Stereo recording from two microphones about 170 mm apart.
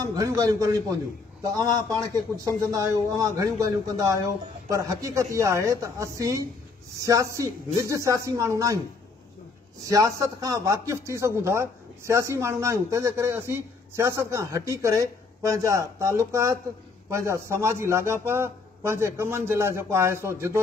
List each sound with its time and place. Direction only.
0.0 s a woman's voice: 20° right (ahead or behind)
9.8 s a man's voice: 20° right (ahead or behind)